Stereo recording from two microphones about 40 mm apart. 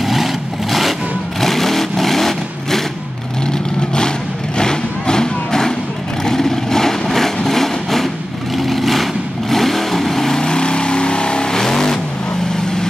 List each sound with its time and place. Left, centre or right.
0.0 s vehicle: centre
4.6 s vehicle: centre
7.4 s a sound: centre
8.5 s vehicle: centre